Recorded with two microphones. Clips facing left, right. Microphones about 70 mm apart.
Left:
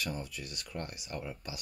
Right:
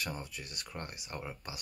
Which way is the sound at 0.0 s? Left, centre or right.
Right.